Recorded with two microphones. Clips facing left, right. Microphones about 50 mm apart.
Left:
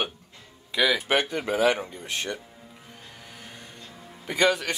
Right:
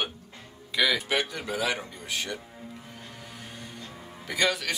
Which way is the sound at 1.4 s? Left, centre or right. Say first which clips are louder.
Left 6 dB; left.